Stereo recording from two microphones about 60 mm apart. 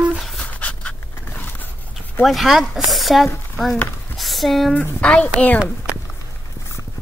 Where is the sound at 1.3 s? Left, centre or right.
Left.